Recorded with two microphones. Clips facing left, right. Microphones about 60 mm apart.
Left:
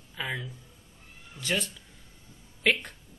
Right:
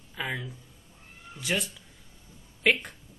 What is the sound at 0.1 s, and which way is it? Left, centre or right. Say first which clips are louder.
Speech: right 1 dB; centre.